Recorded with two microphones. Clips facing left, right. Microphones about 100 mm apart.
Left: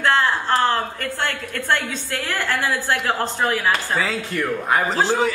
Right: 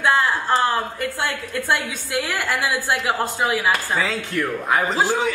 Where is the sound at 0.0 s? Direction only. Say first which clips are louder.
Even; 10° right (ahead or behind).